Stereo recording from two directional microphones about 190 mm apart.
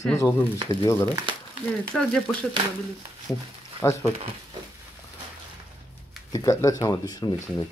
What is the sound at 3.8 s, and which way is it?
Speech, 15° left (ahead or behind).